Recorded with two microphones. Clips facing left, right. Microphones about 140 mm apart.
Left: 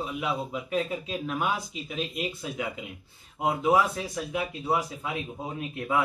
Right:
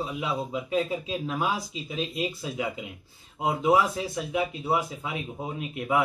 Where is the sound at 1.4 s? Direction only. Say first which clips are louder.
Right 1 dB; 30° right (ahead or behind).